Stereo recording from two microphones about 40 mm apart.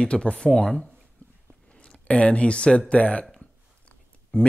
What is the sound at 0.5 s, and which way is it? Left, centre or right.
Speech, centre.